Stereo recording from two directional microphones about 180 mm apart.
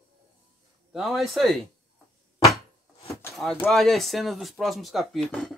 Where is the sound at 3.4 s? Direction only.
5° left (ahead or behind).